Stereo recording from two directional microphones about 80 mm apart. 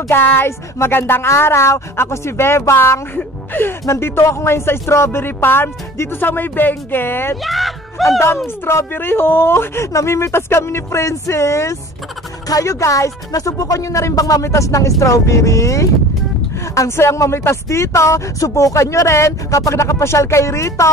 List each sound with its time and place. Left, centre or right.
0.1 s speech: left
7.4 s speech: centre
8.6 s speech: left